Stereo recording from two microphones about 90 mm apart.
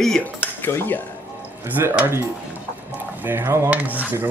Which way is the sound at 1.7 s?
20° right (ahead or behind).